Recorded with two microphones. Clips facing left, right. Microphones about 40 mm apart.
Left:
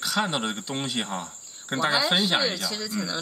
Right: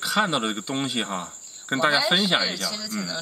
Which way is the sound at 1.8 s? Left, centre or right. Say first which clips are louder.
Right 2 dB; centre.